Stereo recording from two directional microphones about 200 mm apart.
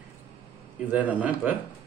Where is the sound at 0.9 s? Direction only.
5° right (ahead or behind).